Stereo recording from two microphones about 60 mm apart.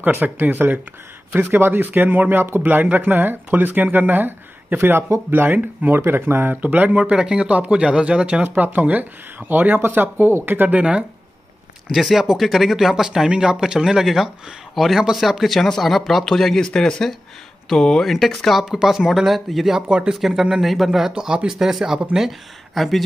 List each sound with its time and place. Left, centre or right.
0.0 s speech: right
7.0 s speech: centre
8.5 s speech: right
10.8 s speech: centre
11.9 s speech: centre
19.9 s speech: centre
20.2 s speech: centre